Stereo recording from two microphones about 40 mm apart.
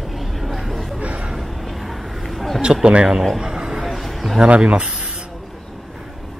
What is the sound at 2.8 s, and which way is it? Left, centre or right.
Speech, right.